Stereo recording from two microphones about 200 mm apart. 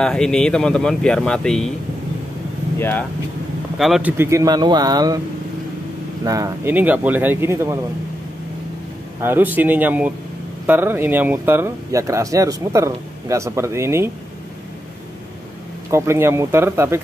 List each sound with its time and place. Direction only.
0.0 s speech: 5° left (ahead or behind)
2.8 s speech: 10° left (ahead or behind)
3.7 s speech: centre (ahead or behind)
4.2 s speech: 15° right (ahead or behind)
6.2 s speech: 15° right (ahead or behind)
9.2 s speech: 10° right (ahead or behind)
15.9 s speech: 15° right (ahead or behind)